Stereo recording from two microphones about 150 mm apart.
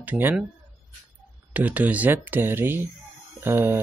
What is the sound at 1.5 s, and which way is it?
Speech, 10° right (ahead or behind).